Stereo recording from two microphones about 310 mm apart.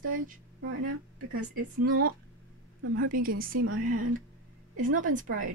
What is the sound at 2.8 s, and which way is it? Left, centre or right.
Speech, right.